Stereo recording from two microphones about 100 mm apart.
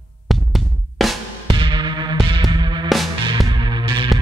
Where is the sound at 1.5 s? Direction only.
55° right (ahead or behind).